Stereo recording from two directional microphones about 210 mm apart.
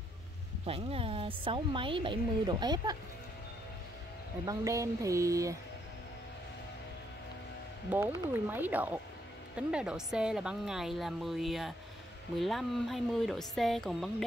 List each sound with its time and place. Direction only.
0.7 s speech: 30° right (ahead or behind)
4.5 s speech: 15° right (ahead or behind)
7.9 s a woman's voice: 10° right (ahead or behind)